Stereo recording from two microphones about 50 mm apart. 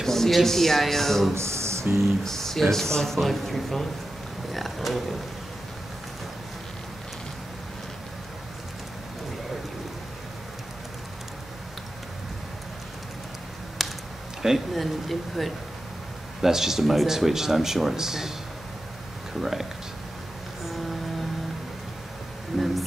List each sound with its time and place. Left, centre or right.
0.0 s speech: centre
1.3 s a sound: right
2.0 s speech: centre
13.8 s a sound: centre
14.4 s speech: centre
19.4 s speech: centre
22.5 s speech: centre